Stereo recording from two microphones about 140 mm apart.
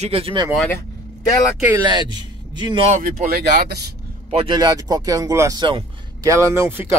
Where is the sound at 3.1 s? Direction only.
90° right.